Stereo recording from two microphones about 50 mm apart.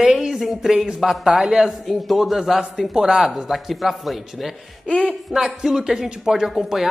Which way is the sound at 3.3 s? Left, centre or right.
Centre.